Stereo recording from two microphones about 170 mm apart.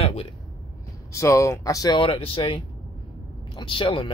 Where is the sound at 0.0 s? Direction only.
35° left (ahead or behind).